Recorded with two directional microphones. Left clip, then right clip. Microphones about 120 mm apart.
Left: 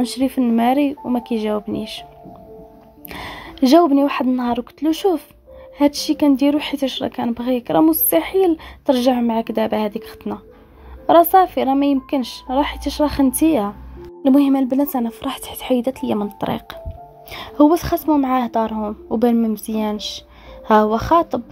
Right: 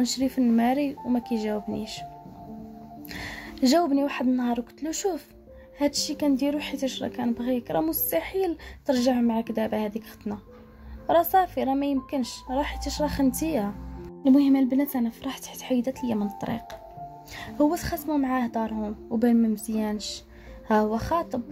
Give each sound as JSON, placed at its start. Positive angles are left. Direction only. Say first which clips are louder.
{"t": 0.0, "sound": "speech", "louder": "left 6 dB", "side_deg": 25}
{"t": 3.1, "sound": "speech", "louder": "left 6 dB", "side_deg": 20}
{"t": 14.2, "sound": "speech", "louder": "left 6 dB", "side_deg": 50}